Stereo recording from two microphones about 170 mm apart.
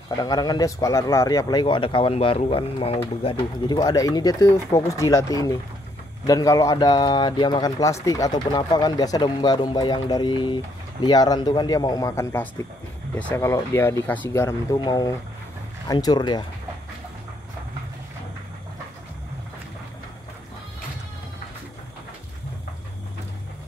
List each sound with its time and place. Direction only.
0.1 s speech: 25° left (ahead or behind)